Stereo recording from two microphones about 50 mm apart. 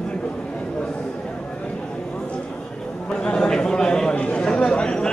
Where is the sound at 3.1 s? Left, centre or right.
Centre.